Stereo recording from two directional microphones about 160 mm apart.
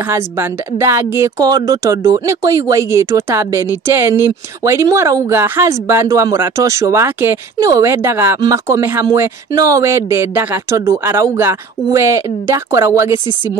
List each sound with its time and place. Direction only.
0.1 s speech: 15° right (ahead or behind)